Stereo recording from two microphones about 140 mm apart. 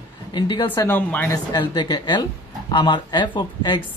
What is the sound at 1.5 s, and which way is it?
Speech, 30° left (ahead or behind).